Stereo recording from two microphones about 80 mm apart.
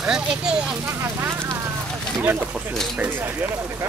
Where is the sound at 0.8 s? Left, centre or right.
Right.